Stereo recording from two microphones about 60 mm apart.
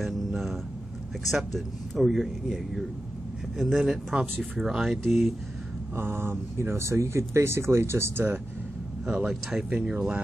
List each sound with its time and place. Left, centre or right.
1.3 s speech: centre
3.8 s speech: centre
5.9 s speech: right
9.0 s speech: centre
9.7 s speech: right